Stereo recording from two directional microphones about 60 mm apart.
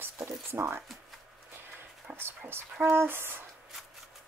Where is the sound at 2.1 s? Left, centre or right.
Right.